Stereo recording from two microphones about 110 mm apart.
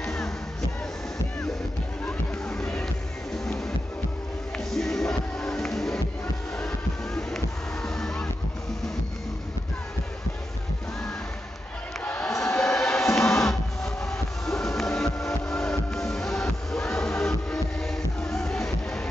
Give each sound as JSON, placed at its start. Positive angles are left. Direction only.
{"t": 0.0, "sound": "music", "side_deg": 5}
{"t": 2.0, "sound": "music", "side_deg": 5}
{"t": 4.6, "sound": "music", "side_deg": 5}
{"t": 7.2, "sound": "music", "side_deg": 5}
{"t": 12.0, "sound": "music", "side_deg": 10}